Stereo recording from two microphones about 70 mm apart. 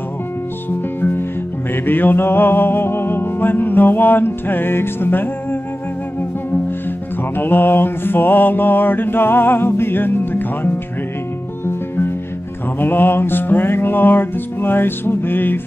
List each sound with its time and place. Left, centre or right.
0.7 s music: left
7.3 s music: left
12.7 s music: left